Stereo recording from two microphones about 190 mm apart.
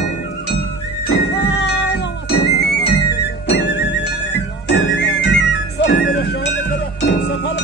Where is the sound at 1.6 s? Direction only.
60° left (ahead or behind).